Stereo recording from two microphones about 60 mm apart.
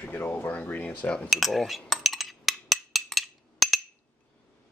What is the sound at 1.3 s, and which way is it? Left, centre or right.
Cutlery, centre.